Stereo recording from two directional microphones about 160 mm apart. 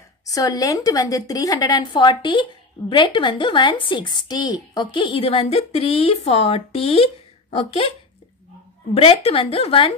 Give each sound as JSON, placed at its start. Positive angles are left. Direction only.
{"t": 0.3, "sound": "a woman's voice", "side_deg": 20}
{"t": 8.9, "sound": "a woman's voice", "side_deg": 35}